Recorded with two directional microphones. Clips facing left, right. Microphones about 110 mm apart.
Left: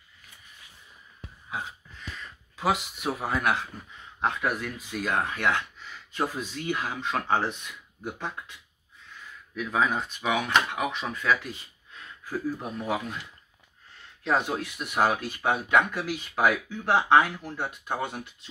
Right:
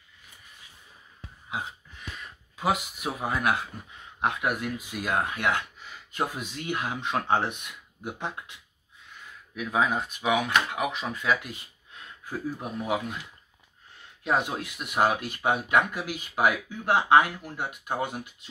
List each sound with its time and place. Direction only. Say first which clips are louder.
1.5 s a sound: right 1 dB; 20° right (ahead or behind)
2.5 s speech: even; 5° right (ahead or behind); by 8.5 s 20° right (ahead or behind)
9.6 s speech: even; 10° right (ahead or behind)
14.2 s speech: left 1 dB; 10° right (ahead or behind)